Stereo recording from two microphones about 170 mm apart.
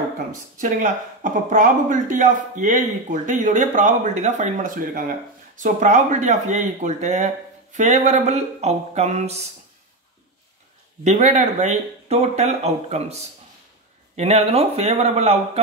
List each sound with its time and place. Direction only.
0.6 s speech: 50° right (ahead or behind)
11.1 s speech: 45° right (ahead or behind)